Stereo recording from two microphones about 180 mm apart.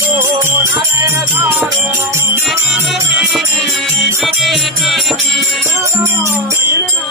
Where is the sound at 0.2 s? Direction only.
15° right (ahead or behind).